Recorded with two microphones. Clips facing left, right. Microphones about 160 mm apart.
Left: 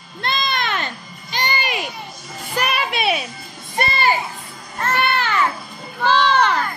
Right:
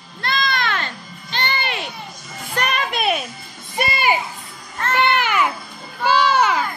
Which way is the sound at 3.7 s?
10° right (ahead or behind).